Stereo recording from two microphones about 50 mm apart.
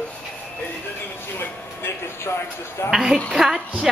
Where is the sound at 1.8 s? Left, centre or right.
Left.